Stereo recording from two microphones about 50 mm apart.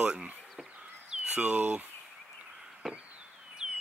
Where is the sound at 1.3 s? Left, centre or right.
Right.